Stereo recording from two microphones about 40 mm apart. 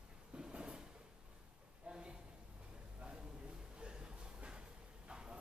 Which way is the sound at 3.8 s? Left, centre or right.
Right.